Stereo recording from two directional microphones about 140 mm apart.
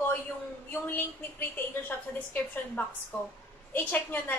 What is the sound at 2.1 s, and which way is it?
A woman's voice, 10° left (ahead or behind).